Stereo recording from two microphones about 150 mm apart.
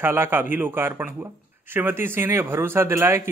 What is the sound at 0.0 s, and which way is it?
Speech, 15° right (ahead or behind).